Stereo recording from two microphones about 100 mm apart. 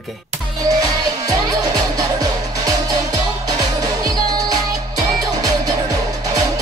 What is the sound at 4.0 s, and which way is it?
Music, 40° right (ahead or behind).